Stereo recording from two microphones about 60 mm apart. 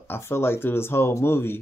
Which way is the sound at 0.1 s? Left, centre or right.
Left.